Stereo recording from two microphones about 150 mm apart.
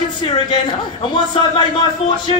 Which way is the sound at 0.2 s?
30° left (ahead or behind).